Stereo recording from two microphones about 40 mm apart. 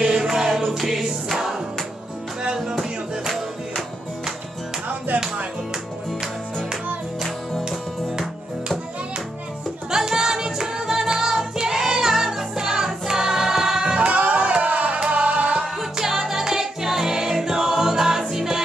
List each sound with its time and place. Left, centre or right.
0.0 s music: centre
2.7 s music: centre
4.8 s music: right
9.8 s music: centre
14.1 s a sound: right
15.1 s music: right
15.6 s music: centre